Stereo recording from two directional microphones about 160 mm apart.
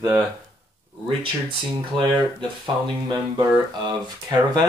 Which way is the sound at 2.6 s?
25° right (ahead or behind).